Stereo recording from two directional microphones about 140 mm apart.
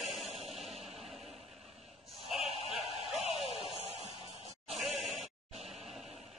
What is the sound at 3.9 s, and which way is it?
Music, 45° left (ahead or behind).